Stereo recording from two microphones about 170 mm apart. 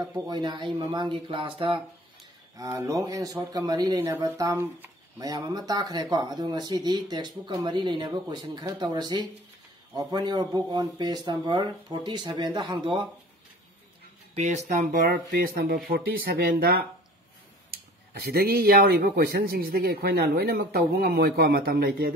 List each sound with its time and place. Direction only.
0.0 s speech: 25° right (ahead or behind)
2.5 s speech: 20° right (ahead or behind)
14.3 s speech: 40° right (ahead or behind); by 16.8 s 60° right (ahead or behind)
18.1 s speech: 65° right (ahead or behind)